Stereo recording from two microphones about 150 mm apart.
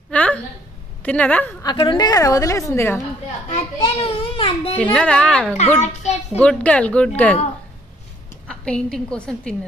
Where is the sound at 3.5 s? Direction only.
40° left (ahead or behind).